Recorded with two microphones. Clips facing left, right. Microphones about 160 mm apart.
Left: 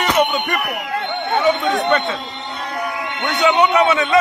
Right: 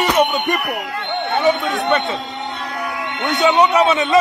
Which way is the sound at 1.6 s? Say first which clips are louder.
Left 2 dB; 20° left (ahead or behind).